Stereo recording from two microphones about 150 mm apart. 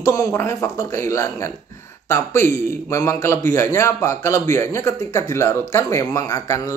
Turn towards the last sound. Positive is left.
turn(degrees=20)  # may be behind; listen again after turning